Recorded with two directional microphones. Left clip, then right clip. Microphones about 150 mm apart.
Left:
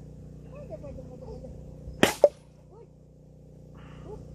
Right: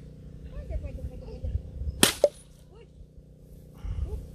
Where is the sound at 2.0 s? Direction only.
40° right (ahead or behind).